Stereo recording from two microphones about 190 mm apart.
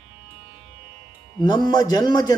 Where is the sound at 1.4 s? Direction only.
20° left (ahead or behind).